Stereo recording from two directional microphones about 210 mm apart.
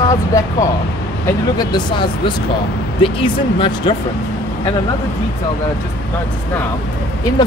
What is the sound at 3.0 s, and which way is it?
Speech, 25° left (ahead or behind).